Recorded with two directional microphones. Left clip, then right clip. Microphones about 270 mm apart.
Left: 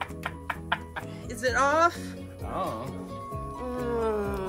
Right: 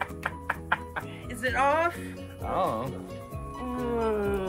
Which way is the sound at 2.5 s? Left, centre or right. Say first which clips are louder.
Right 4 dB; centre.